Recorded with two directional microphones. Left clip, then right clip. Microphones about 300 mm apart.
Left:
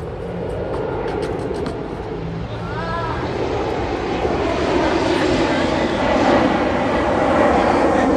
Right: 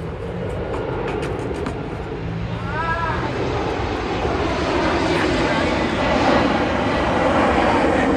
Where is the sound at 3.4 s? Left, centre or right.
Left.